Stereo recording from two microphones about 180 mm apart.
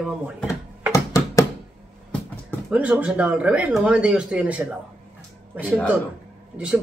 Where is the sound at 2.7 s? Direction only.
5° right (ahead or behind).